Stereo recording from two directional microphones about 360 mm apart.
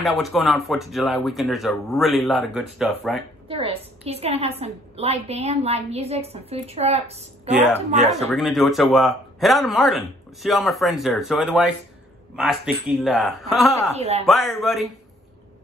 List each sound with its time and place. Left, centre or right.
0.0 s speech: centre
3.4 s a woman's voice: centre
8.1 s speech: centre
13.9 s a woman's voice: centre
14.2 s speech: centre